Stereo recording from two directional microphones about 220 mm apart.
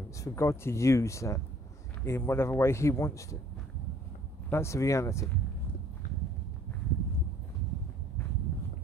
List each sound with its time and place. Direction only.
0.2 s speech: 15° left (ahead or behind)
4.5 s speech: 10° left (ahead or behind)